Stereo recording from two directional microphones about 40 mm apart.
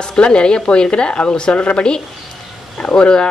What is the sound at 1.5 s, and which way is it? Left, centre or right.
Speech, left.